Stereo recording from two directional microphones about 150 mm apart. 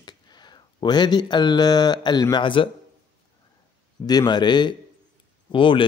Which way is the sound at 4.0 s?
25° left (ahead or behind).